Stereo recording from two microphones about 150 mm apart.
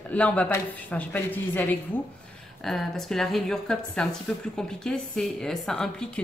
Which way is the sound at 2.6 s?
Centre (ahead or behind).